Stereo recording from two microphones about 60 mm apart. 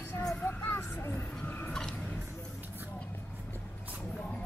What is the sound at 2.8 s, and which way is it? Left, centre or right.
Vehicle, left.